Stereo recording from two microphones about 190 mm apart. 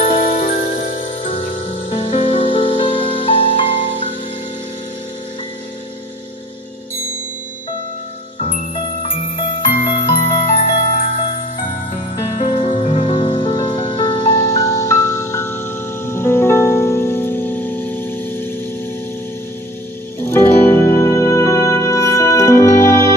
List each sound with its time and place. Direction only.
0.0 s music: 25° left (ahead or behind)
0.4 s music: 45° left (ahead or behind)
9.8 s music: 40° left (ahead or behind)
12.4 s music: 30° left (ahead or behind)
14.6 s glockenspiel: 15° left (ahead or behind)
16.1 s music: 15° left (ahead or behind)
20.2 s music: 10° left (ahead or behind)